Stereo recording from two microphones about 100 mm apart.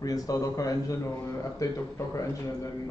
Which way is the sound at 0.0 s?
35° left (ahead or behind).